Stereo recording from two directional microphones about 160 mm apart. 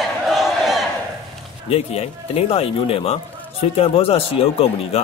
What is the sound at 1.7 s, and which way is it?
A man's voice, 40° left (ahead or behind).